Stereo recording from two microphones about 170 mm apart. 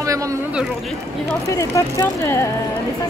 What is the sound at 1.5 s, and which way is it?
Speech, 15° left (ahead or behind).